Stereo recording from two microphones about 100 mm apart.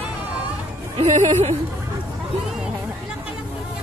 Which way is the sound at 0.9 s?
90° right.